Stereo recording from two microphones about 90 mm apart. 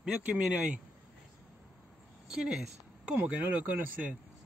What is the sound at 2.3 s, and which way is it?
Speech, 10° right (ahead or behind).